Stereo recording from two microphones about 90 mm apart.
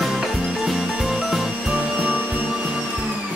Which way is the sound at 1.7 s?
20° right (ahead or behind).